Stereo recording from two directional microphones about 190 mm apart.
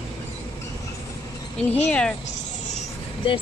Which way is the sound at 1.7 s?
5° left (ahead or behind).